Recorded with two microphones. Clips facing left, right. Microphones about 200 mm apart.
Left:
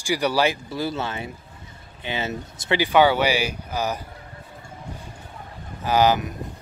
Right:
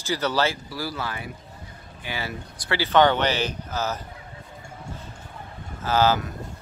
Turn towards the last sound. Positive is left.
turn(degrees=15)  # may be behind; listen again after turning